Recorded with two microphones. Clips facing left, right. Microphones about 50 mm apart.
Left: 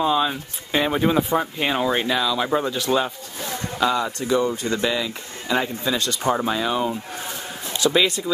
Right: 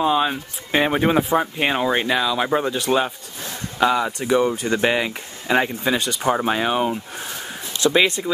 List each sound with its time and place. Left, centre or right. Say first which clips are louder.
0.0 s speech: right 1 dB; centre
4.3 s speech: right 3 dB; right
5.9 s speech: even; centre
6.4 s speech: right 2 dB; right
7.9 s speech: right 3 dB; right